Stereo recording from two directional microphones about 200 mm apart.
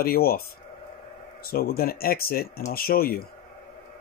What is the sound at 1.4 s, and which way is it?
Speech, 50° left (ahead or behind).